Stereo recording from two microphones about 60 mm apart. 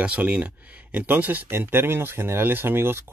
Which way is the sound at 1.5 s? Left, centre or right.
Right.